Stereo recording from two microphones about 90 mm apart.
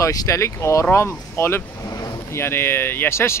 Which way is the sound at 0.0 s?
40° left (ahead or behind).